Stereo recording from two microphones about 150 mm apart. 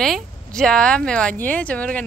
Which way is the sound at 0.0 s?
5° left (ahead or behind).